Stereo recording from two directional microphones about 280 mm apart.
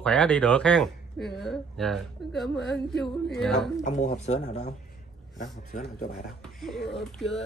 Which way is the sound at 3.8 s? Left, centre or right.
Left.